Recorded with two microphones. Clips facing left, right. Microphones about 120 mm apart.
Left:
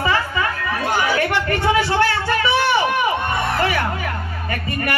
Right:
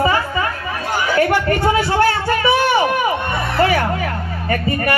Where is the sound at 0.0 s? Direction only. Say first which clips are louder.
Right 3 dB; 35° right (ahead or behind).